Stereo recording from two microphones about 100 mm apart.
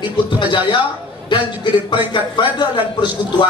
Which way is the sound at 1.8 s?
50° left (ahead or behind).